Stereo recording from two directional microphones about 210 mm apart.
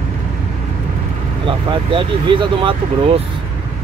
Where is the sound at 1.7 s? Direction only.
25° right (ahead or behind).